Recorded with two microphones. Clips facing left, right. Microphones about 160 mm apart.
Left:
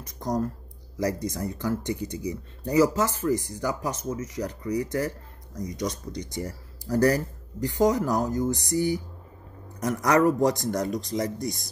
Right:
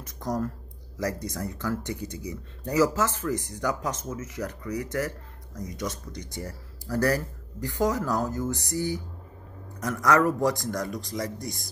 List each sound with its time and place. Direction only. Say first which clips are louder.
0.0 s a man's voice: left 2 dB; 15° left (ahead or behind)